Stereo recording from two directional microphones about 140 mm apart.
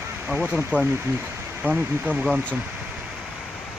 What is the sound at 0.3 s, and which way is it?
Speech, 10° right (ahead or behind).